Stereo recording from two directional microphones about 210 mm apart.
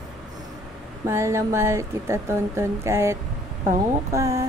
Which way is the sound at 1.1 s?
15° right (ahead or behind).